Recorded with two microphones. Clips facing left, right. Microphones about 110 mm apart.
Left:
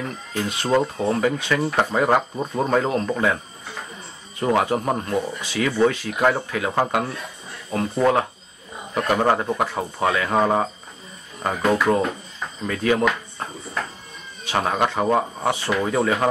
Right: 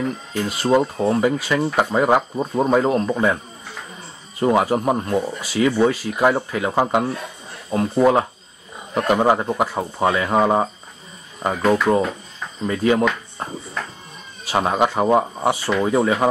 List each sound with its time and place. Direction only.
0.0 s speech: 5° right (ahead or behind)
4.4 s speech: 10° right (ahead or behind)
12.0 s cricket: centre (ahead or behind)
12.6 s speech: 20° right (ahead or behind)
13.8 s cat: centre (ahead or behind)
14.5 s speech: 10° right (ahead or behind)